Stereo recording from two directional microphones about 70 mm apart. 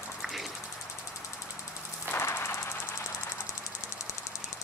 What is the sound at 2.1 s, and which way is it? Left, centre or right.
Jackhammer, left.